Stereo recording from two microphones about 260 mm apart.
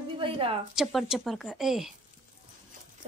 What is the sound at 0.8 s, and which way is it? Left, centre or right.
Speech, centre.